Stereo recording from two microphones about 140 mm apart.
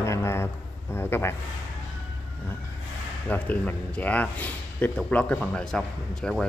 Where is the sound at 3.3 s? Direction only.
10° left (ahead or behind).